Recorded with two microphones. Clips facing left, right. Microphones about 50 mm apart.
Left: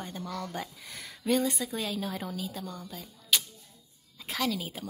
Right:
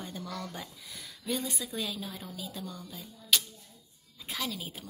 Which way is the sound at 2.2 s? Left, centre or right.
Left.